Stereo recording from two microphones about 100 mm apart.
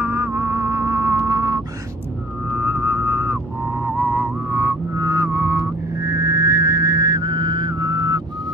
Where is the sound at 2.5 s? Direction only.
20° right (ahead or behind).